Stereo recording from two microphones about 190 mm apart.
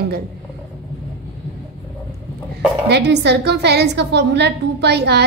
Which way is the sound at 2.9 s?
60° right (ahead or behind).